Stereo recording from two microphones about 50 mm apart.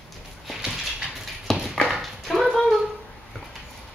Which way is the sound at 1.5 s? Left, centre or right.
Centre.